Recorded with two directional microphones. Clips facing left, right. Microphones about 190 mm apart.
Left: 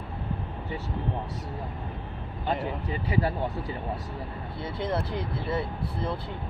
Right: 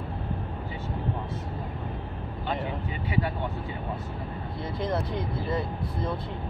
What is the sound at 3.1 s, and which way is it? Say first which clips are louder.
Speech: left 2 dB; 35° left (ahead or behind).